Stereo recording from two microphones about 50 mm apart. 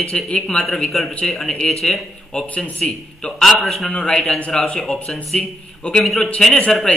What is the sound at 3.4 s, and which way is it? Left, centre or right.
A man's voice, centre.